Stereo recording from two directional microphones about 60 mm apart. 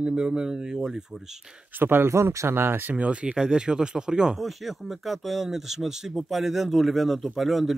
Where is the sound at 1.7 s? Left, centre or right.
Right.